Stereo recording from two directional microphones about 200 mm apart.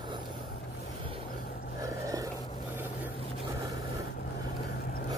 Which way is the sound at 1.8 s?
15° right (ahead or behind).